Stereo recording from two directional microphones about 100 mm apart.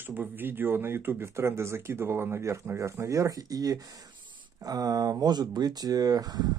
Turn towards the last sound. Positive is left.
turn(degrees=-40)  # may be behind; listen again after turning